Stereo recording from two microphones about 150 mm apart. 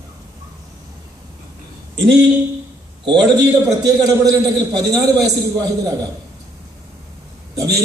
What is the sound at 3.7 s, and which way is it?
A man's voice, 25° right (ahead or behind).